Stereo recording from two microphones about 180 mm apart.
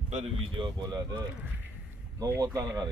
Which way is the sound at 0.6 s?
20° right (ahead or behind).